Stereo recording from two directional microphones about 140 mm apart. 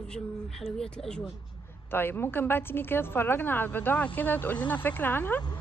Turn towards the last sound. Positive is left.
turn(degrees=15)  # may be behind; listen again after turning